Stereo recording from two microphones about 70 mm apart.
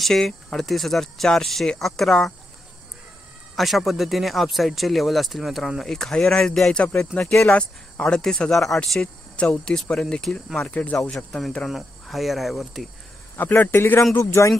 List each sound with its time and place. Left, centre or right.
0.0 s speech: centre
3.5 s speech: centre
11.7 s speech: centre
13.4 s a man's voice: left